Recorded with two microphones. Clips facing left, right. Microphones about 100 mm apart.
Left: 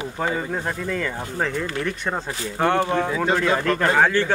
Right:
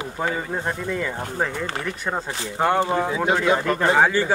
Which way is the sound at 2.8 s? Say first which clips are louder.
Even; 15° right (ahead or behind).